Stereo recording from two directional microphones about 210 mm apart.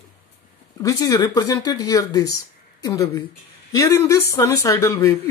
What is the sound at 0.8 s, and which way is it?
Speech, 15° left (ahead or behind).